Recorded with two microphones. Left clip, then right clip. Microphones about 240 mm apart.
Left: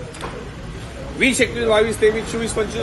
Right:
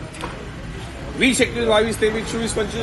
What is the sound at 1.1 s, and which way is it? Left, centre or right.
A man's voice, right.